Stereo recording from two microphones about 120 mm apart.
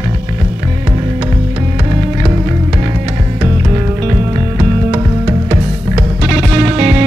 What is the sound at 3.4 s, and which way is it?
Music, 30° right (ahead or behind).